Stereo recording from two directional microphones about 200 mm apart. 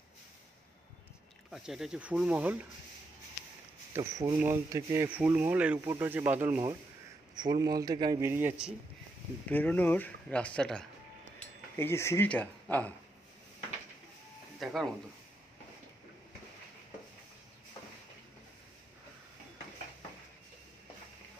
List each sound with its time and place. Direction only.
1.5 s speech: centre (ahead or behind)
3.9 s a man's voice: 15° right (ahead or behind)
9.5 s speech: 10° left (ahead or behind)
14.6 s speech: centre (ahead or behind)